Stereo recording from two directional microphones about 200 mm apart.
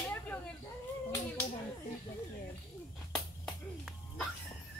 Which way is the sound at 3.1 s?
Centre (ahead or behind).